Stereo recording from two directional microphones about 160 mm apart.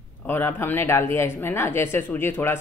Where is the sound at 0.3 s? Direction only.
15° left (ahead or behind).